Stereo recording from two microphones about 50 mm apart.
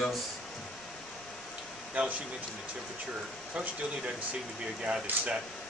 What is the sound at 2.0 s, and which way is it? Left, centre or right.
Speech, right.